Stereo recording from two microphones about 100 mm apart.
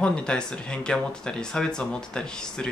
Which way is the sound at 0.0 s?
10° left (ahead or behind).